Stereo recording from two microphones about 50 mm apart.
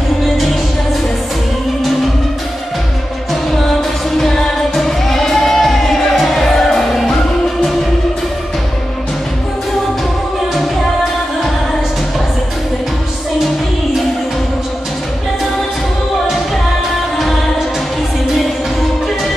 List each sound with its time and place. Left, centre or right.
4.2 s music: centre